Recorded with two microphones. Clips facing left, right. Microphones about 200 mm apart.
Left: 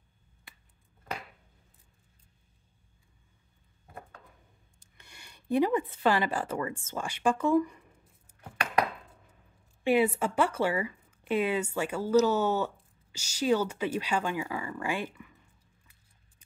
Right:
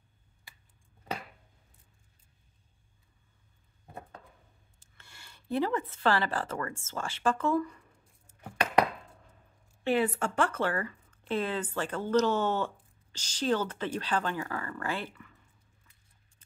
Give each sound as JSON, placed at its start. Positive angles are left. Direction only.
{"t": 4.7, "sound": "speech", "side_deg": 15}
{"t": 9.8, "sound": "speech", "side_deg": 10}